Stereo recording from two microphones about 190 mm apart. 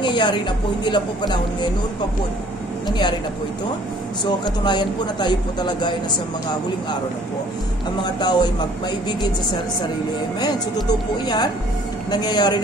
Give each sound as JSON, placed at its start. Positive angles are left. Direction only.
{"t": 0.0, "sound": "a woman's voice", "side_deg": 25}
{"t": 2.9, "sound": "speech", "side_deg": 25}
{"t": 4.2, "sound": "speech", "side_deg": 20}
{"t": 8.0, "sound": "speech", "side_deg": 20}
{"t": 10.4, "sound": "speech", "side_deg": 20}